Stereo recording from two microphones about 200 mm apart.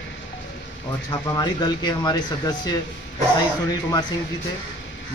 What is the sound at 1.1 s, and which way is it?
Speech, 20° left (ahead or behind).